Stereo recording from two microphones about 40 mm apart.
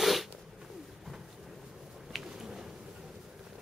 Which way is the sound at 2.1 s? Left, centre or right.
Centre.